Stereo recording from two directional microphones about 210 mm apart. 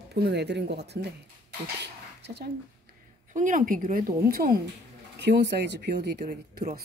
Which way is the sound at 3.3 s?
40° right (ahead or behind).